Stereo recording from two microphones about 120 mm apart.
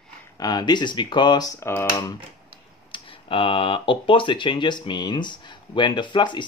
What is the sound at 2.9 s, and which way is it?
Speech, 50° left (ahead or behind).